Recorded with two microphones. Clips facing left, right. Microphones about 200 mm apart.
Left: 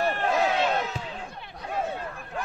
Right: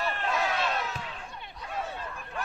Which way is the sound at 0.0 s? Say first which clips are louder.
Left 6 dB; 45° left (ahead or behind).